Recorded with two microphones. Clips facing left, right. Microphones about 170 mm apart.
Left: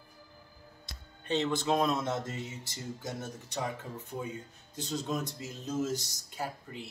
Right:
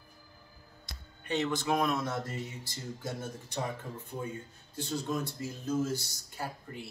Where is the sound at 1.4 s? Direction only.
25° left (ahead or behind).